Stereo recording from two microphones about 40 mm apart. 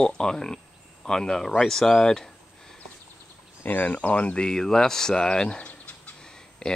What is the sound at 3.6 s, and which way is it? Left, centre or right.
Speech, left.